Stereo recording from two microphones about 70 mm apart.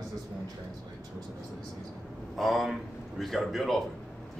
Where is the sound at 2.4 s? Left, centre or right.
Centre.